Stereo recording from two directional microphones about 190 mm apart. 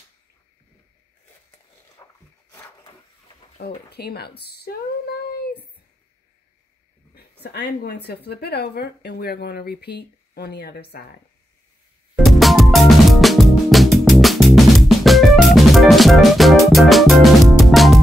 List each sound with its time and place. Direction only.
2.0 s a sound: 20° left (ahead or behind)
3.5 s speech: 55° left (ahead or behind)
7.2 s speech: 60° left (ahead or behind)
12.3 s music: centre (ahead or behind)